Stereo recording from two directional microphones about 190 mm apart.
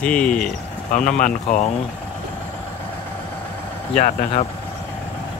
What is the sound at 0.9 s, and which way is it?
Speech, 45° left (ahead or behind).